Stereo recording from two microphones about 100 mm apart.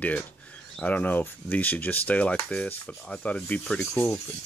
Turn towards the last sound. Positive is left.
turn(degrees=15)  # may be behind; listen again after turning